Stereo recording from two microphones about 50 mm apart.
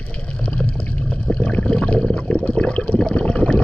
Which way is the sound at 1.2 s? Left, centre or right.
Left.